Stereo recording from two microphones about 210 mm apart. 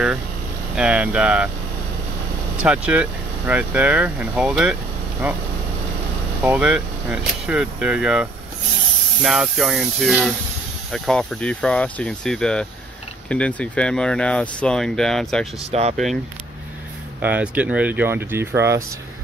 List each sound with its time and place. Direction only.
0.7 s speech: 5° right (ahead or behind)
2.6 s speech: 5° right (ahead or behind)
6.4 s speech: 5° right (ahead or behind)
15.7 s speech: 30° right (ahead or behind)
17.2 s speech: 5° right (ahead or behind)